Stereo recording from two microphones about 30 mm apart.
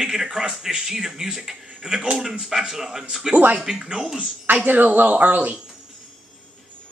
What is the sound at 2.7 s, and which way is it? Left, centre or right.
Speech, centre.